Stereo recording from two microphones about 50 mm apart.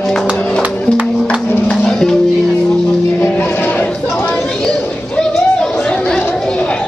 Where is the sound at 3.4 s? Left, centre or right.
Left.